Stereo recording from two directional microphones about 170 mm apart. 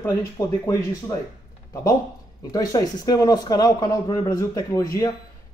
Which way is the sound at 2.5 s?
20° left (ahead or behind).